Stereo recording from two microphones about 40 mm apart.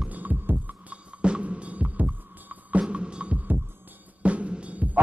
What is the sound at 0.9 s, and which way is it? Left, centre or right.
Music, right.